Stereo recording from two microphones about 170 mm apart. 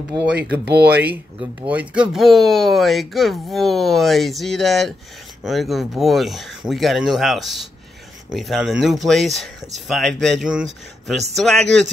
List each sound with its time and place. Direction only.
0.2 s speech: 70° right (ahead or behind)
1.7 s speech: 5° right (ahead or behind)